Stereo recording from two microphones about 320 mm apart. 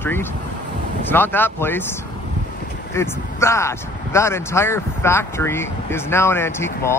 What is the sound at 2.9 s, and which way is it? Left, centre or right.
Speech, centre.